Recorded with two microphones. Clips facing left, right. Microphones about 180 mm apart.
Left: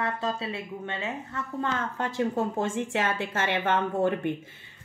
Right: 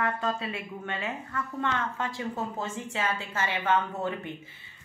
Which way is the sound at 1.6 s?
50° left (ahead or behind).